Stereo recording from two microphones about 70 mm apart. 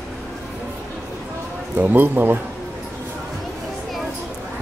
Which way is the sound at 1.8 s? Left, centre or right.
Right.